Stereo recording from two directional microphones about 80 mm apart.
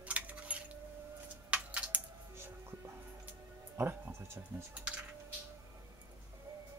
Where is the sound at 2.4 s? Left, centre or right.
Right.